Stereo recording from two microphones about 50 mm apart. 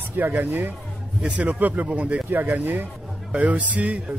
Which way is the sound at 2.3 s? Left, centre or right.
Right.